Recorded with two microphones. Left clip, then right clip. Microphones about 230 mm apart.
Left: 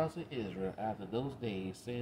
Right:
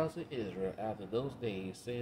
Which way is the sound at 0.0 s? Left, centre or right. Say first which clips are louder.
Even; centre.